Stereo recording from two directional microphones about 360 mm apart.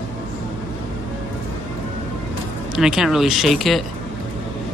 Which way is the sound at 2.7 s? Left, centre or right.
Centre.